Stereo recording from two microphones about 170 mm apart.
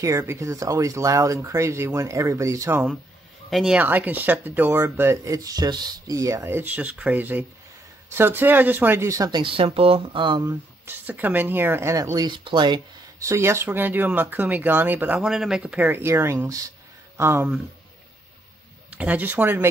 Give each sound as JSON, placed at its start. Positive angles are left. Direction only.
{"t": 0.0, "sound": "speech", "side_deg": -15}
{"t": 3.4, "sound": "speech", "side_deg": 0}
{"t": 10.5, "sound": "speech", "side_deg": -10}
{"t": 18.9, "sound": "speech", "side_deg": -10}